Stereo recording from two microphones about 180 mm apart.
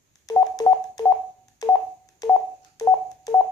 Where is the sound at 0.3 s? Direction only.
20° left (ahead or behind).